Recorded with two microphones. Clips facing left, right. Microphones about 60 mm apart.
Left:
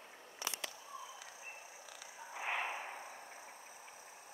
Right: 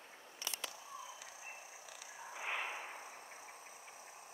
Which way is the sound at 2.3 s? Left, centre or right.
Left.